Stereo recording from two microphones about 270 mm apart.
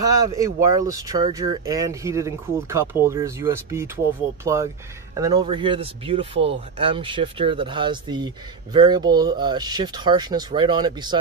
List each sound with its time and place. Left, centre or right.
0.0 s speech: centre